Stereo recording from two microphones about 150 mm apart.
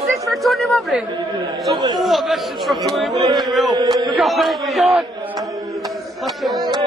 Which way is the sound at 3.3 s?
Centre (ahead or behind).